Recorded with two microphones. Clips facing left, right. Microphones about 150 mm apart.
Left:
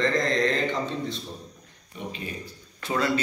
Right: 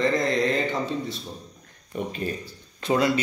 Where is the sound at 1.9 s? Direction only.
45° right (ahead or behind).